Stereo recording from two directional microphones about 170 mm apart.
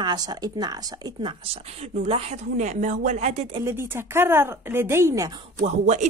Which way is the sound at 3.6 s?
15° right (ahead or behind).